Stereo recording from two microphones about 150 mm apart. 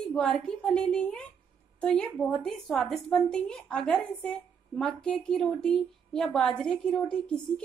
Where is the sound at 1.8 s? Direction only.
5° left (ahead or behind).